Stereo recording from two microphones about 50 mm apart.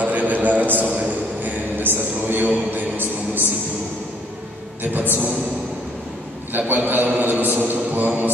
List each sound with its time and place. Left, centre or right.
0.0 s a sound: right
1.4 s a man's voice: right
4.9 s mantra: right
6.5 s mantra: right